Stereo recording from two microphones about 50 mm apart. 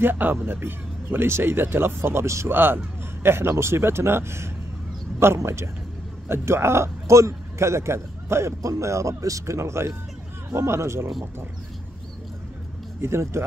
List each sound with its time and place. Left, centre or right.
0.0 s speech: right
2.5 s a man's voice: right
13.0 s speech: right